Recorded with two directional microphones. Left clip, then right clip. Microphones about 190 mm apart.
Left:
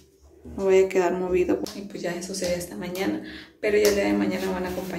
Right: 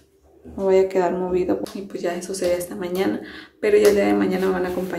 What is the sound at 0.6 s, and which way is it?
Speech, 5° right (ahead or behind).